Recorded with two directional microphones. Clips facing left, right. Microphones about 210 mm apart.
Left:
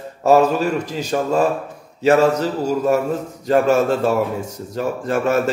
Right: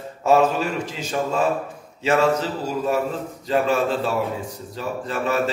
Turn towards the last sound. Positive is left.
turn(degrees=50)  # may be behind; listen again after turning